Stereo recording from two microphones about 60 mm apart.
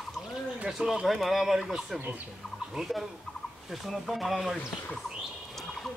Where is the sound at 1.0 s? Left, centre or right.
Centre.